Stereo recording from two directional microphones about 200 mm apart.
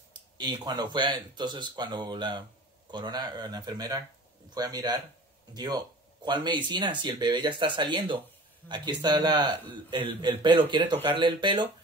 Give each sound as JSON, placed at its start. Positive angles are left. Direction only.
{"t": 0.4, "sound": "speech", "side_deg": -20}